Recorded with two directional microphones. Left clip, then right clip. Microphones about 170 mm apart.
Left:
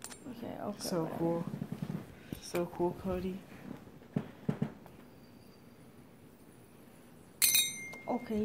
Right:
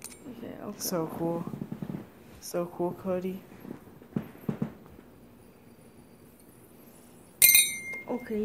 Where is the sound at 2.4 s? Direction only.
20° right (ahead or behind).